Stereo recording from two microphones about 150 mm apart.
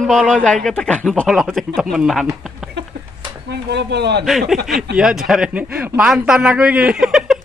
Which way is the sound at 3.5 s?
90° right.